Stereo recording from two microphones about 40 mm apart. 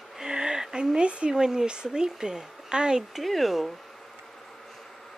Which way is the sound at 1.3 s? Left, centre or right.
Centre.